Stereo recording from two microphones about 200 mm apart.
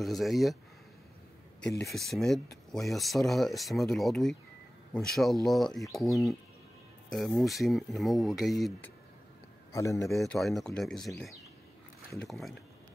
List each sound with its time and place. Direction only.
0.0 s speech: centre (ahead or behind)
1.9 s speech: centre (ahead or behind)
9.7 s a man's voice: 15° left (ahead or behind)
10.0 s speech: centre (ahead or behind)